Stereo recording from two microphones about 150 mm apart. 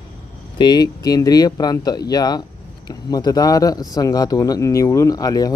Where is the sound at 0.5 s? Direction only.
30° left (ahead or behind).